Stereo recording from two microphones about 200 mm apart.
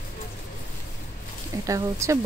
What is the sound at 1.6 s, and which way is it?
Speech, 15° right (ahead or behind).